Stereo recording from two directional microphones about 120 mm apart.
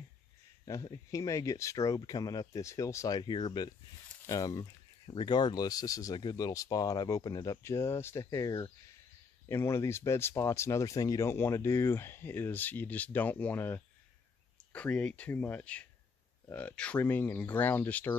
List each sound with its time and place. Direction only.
0.7 s speech: 25° left (ahead or behind)
4.3 s a sound: 30° left (ahead or behind)
5.1 s speech: 40° left (ahead or behind); by 18.1 s 15° left (ahead or behind)